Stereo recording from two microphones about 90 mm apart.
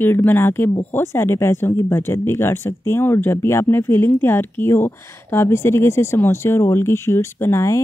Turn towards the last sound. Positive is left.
turn(degrees=30)  # may be behind; listen again after turning